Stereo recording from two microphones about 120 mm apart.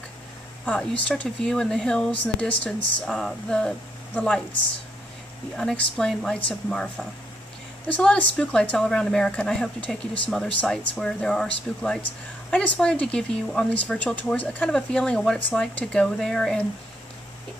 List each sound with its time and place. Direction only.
0.7 s speech: 10° left (ahead or behind)
5.6 s a woman's voice: 5° left (ahead or behind)